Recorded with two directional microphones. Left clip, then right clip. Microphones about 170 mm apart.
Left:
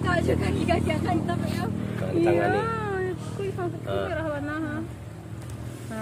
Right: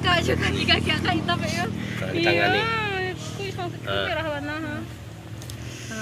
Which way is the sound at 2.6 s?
45° left (ahead or behind).